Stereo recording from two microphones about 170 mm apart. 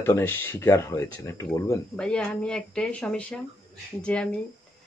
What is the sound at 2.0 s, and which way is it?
Speech, 5° left (ahead or behind).